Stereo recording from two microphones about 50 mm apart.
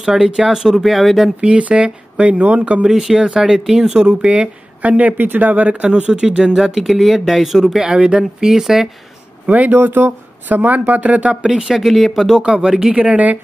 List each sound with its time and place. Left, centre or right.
0.0 s speech: centre
1.4 s speech: right
2.9 s speech: centre
9.7 s speech: right
11.6 s speech: centre
12.9 s speech: right